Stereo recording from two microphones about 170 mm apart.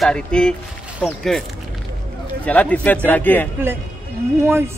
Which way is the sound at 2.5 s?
10° left (ahead or behind).